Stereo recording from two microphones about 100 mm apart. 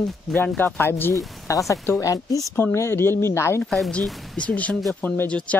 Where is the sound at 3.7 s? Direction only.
5° left (ahead or behind); by 5.3 s 20° left (ahead or behind).